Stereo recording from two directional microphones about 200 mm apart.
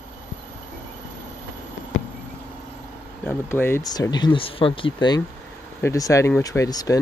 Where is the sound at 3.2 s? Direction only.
10° left (ahead or behind).